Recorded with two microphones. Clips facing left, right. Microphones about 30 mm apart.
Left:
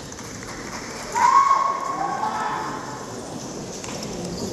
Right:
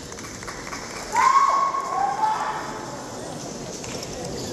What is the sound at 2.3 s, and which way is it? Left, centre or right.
Vehicle, centre.